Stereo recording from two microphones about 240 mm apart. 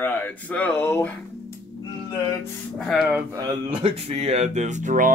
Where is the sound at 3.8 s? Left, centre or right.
Right.